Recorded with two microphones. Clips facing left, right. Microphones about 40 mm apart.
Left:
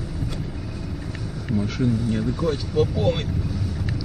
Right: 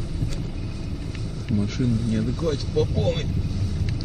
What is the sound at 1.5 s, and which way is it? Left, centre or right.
Speech, centre.